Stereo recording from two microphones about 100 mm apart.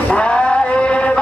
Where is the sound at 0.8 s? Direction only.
10° left (ahead or behind).